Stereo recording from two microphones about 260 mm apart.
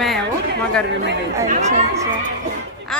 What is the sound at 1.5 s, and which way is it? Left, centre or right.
Speech, right.